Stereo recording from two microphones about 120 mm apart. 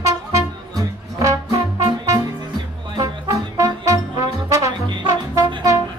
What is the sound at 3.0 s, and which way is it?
Music, 30° right (ahead or behind).